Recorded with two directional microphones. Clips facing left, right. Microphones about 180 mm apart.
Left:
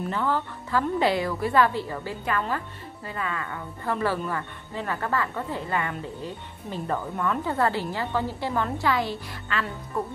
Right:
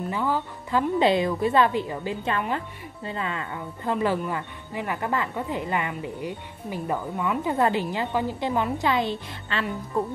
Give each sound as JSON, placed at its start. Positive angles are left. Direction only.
{"t": 0.1, "sound": "a woman's voice", "side_deg": -15}